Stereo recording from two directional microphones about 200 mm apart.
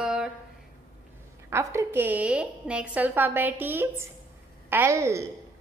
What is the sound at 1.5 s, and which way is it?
A woman's voice, 15° right (ahead or behind).